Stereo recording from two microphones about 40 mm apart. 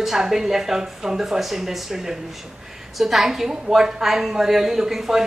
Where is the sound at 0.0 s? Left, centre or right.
Centre.